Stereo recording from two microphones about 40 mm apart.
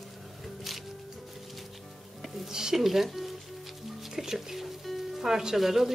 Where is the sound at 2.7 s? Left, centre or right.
Centre.